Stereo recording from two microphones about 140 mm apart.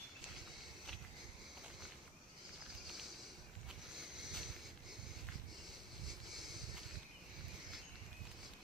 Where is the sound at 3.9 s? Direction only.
5° right (ahead or behind).